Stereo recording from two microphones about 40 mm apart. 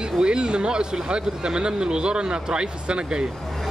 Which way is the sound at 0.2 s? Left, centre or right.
Right.